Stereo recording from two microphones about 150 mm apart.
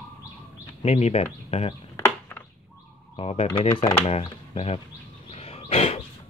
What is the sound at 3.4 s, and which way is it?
Speech, 25° left (ahead or behind).